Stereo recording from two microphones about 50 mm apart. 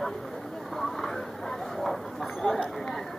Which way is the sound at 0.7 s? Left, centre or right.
Centre.